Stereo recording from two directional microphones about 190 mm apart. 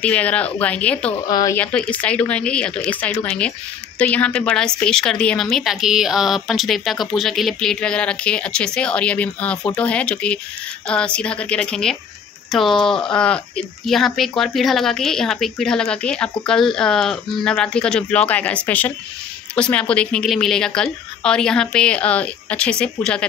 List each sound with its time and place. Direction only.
0.0 s speech: 5° left (ahead or behind)
1.2 s speech: 20° left (ahead or behind)
1.6 s speech: 5° left (ahead or behind)